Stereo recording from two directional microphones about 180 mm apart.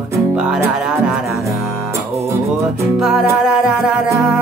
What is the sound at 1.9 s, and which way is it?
Music, 15° right (ahead or behind).